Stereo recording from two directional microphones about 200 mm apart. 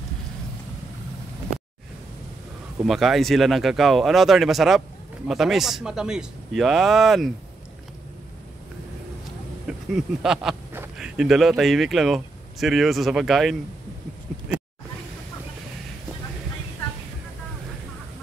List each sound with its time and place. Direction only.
2.9 s a man's voice: centre (ahead or behind)
9.7 s speech: 5° right (ahead or behind)